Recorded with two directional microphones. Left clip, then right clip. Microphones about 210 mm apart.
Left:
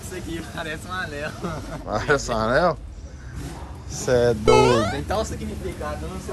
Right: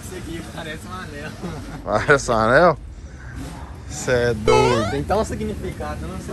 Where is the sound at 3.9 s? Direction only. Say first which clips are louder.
Even; 15° left (ahead or behind).